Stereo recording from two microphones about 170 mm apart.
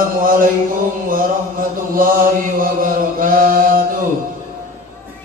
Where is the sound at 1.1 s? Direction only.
55° right (ahead or behind).